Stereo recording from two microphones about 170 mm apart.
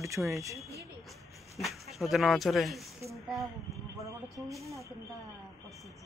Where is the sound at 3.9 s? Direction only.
20° right (ahead or behind).